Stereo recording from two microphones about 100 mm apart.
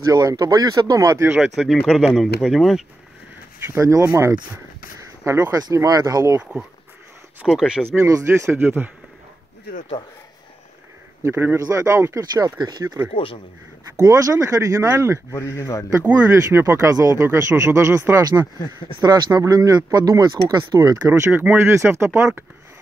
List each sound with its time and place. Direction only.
0.1 s speech: 40° right (ahead or behind)
1.3 s speech: 5° right (ahead or behind)
3.5 s speech: 25° right (ahead or behind)
5.6 s speech: 35° right (ahead or behind)
7.4 s speech: 5° right (ahead or behind)
8.1 s speech: 25° right (ahead or behind)
11.2 s speech: 25° right (ahead or behind); by 12.8 s 40° right (ahead or behind)
12.8 s speech: 30° right (ahead or behind)
13.1 s a man's voice: 65° left (ahead or behind)
13.9 s speech: 30° right (ahead or behind)
15.3 s speech: 30° left (ahead or behind)
16.3 s speech: 25° right (ahead or behind)
18.9 s speech: 40° right (ahead or behind)
21.1 s speech: 20° right (ahead or behind)